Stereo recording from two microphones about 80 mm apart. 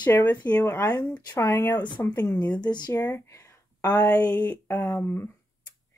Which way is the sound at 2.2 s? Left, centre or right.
Left.